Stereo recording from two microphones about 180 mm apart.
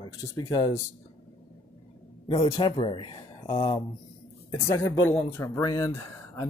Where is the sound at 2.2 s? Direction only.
30° left (ahead or behind).